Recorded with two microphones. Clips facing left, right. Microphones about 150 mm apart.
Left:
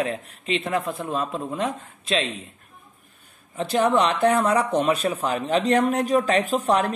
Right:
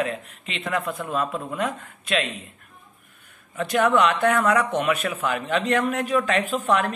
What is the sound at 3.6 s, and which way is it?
Speech, 30° left (ahead or behind).